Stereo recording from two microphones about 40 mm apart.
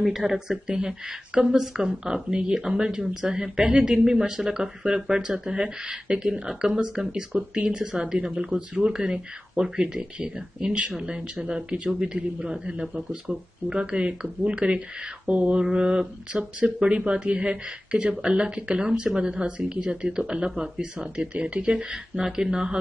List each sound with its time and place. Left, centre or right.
0.0 s speech: centre; by 21.7 s right
21.9 s speech: centre